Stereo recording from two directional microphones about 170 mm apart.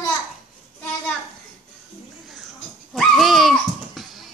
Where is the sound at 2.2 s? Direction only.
Centre (ahead or behind).